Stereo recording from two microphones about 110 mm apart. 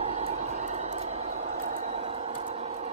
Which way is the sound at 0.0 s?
70° right (ahead or behind).